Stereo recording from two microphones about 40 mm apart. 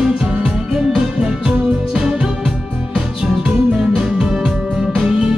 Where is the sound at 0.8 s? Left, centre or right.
Centre.